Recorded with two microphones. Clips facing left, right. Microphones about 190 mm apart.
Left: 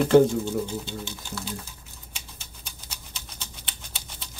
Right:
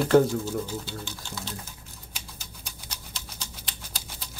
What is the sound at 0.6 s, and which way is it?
Speech, 25° left (ahead or behind).